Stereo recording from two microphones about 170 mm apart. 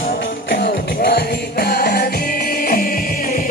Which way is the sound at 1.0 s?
70° left (ahead or behind).